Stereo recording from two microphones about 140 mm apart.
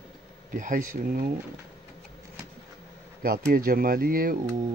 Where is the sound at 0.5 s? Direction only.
70° right (ahead or behind).